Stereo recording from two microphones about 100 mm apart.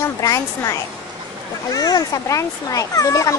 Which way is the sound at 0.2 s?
35° left (ahead or behind).